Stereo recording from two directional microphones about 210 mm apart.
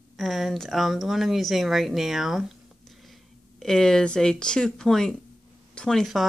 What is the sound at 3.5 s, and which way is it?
Speech, centre (ahead or behind).